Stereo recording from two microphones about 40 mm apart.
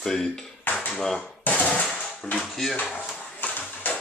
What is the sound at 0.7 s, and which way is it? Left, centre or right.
Dishes, left.